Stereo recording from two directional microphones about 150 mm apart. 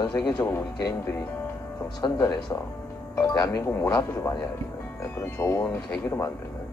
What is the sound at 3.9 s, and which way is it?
Speech, 30° left (ahead or behind).